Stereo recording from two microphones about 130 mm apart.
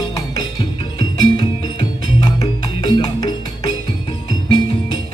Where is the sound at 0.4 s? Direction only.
35° left (ahead or behind).